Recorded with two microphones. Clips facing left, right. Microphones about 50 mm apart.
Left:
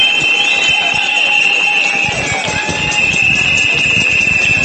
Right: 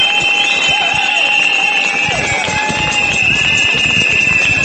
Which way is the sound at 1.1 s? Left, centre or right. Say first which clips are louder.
Left 1 dB; centre.